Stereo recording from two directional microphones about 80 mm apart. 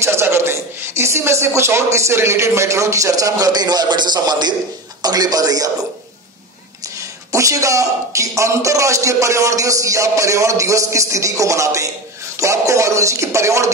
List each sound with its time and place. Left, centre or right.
0.0 s a man's voice: right
7.3 s a man's voice: right